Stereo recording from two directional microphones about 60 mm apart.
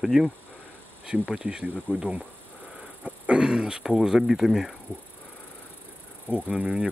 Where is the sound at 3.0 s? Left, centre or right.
Centre.